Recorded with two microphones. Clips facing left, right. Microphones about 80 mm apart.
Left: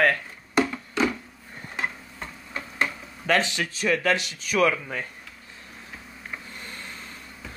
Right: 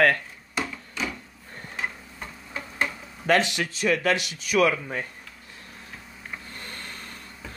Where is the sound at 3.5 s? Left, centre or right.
Left.